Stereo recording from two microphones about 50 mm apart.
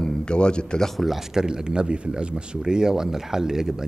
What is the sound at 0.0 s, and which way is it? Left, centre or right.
Speech, centre.